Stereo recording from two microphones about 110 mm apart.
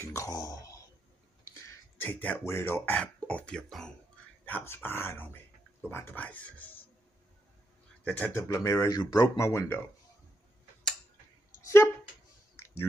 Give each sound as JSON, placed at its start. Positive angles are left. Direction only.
{"t": 0.0, "sound": "a sound", "side_deg": 30}
{"t": 2.0, "sound": "speech", "side_deg": 15}
{"t": 4.5, "sound": "speech", "side_deg": 15}
{"t": 8.0, "sound": "speech", "side_deg": 15}
{"t": 8.4, "sound": "speech", "side_deg": 30}